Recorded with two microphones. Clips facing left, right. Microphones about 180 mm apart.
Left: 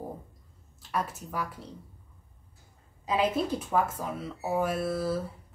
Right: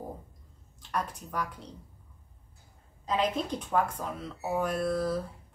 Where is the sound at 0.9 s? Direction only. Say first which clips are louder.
Left 1 dB; 5° left (ahead or behind).